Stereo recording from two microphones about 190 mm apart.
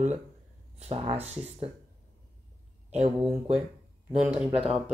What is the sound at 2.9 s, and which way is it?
Speech, 35° right (ahead or behind).